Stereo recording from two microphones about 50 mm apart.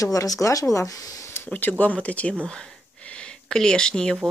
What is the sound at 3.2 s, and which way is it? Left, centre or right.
Speech, centre.